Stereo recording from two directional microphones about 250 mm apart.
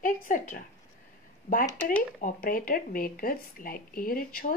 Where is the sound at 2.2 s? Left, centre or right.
Left.